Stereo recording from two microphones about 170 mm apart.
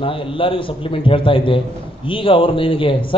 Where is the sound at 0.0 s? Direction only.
30° left (ahead or behind).